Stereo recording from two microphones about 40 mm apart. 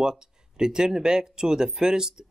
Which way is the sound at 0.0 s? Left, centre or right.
Centre.